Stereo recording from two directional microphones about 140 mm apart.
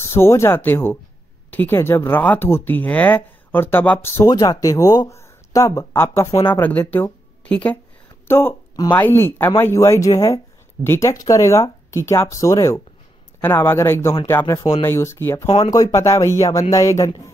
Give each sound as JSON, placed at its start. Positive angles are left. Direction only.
{"t": 0.0, "sound": "speech", "side_deg": 20}
{"t": 15.4, "sound": "speech", "side_deg": 40}
{"t": 15.7, "sound": "speech", "side_deg": 25}